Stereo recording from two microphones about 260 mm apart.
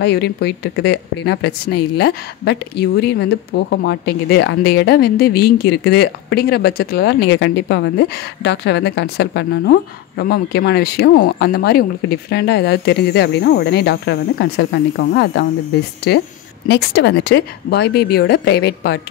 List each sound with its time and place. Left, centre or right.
0.0 s speech: left
16.6 s speech: left